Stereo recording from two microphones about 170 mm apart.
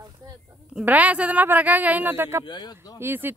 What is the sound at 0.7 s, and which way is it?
A man's voice, 10° right (ahead or behind).